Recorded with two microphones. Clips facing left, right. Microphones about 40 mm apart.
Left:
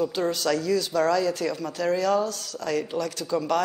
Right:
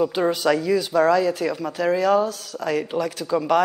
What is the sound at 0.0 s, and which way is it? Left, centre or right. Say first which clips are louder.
Speech: right 5 dB; centre.